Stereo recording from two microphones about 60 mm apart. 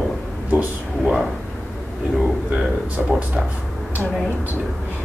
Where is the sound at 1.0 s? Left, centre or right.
Centre.